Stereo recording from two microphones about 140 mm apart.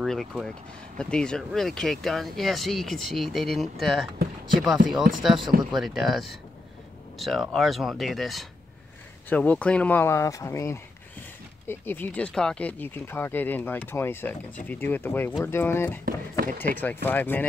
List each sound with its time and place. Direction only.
0.0 s speech: centre (ahead or behind)